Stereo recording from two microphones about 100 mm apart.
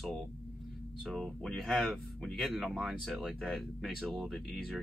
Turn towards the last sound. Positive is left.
turn(degrees=0)  # may be behind; listen again after turning